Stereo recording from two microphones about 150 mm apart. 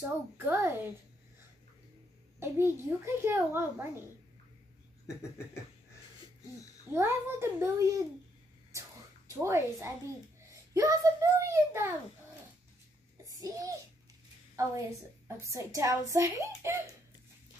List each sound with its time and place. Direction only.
0.0 s a child's voice: 15° right (ahead or behind)
2.4 s a child's voice: 15° right (ahead or behind)
6.9 s a child's voice: 15° right (ahead or behind)
9.3 s a child's voice: 20° right (ahead or behind)
13.4 s a child's voice: 20° right (ahead or behind)
15.2 s a child's voice: 20° right (ahead or behind)